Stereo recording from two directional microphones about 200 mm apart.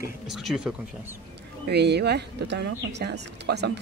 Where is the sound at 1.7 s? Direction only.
55° right (ahead or behind).